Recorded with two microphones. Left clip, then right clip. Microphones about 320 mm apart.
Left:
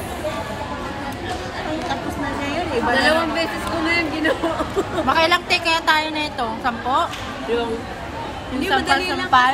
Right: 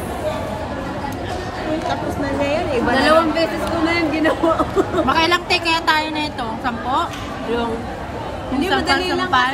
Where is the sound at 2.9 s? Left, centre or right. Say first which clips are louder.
Right 4 dB; right.